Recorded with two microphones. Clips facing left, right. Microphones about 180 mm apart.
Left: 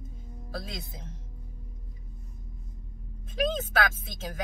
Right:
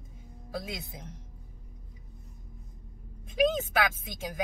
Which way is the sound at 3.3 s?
15° right (ahead or behind).